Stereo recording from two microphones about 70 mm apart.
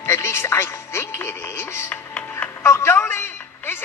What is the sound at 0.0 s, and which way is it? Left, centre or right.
Music, left.